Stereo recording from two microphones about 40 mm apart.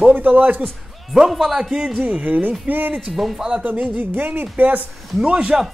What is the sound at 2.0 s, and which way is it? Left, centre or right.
Speech, right.